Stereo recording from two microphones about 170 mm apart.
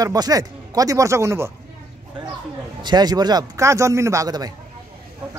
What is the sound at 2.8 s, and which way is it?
A man's voice, 25° right (ahead or behind).